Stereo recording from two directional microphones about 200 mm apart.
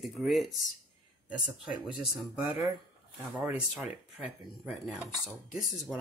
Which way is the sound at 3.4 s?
Centre (ahead or behind).